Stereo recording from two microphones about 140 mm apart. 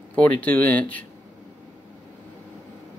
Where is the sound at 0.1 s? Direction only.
10° left (ahead or behind).